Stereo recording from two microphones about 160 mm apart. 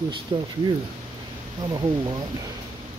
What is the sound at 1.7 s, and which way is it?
Speech, 25° right (ahead or behind).